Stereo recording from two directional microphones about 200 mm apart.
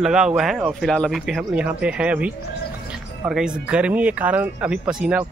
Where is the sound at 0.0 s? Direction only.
5° right (ahead or behind).